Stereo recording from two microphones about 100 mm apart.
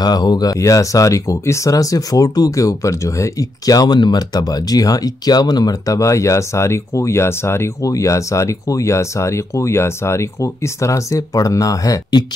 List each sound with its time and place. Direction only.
0.0 s speech: 45° left (ahead or behind)